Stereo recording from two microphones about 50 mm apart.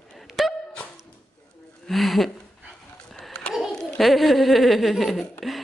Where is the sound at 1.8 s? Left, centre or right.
Centre.